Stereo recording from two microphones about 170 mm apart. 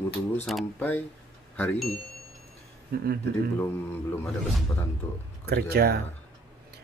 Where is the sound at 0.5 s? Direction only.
Centre (ahead or behind).